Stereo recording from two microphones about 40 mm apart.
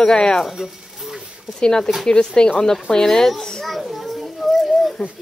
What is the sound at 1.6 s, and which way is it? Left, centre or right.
Speech, centre.